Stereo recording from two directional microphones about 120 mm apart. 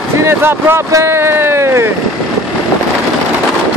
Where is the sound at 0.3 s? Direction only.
20° right (ahead or behind).